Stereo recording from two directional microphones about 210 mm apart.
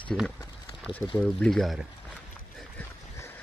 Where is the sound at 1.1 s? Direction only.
5° left (ahead or behind).